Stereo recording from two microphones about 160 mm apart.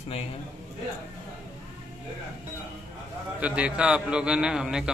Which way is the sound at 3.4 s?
5° right (ahead or behind).